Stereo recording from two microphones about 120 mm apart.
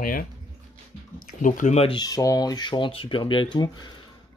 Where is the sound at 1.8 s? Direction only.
35° left (ahead or behind).